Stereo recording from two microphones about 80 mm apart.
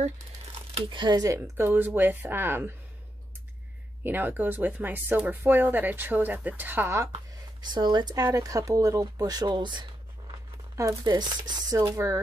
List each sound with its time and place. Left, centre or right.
0.8 s speech: right
1.1 s speech: right
1.6 s speech: right
4.0 s speech: right
7.6 s speech: right
11.1 s speech: right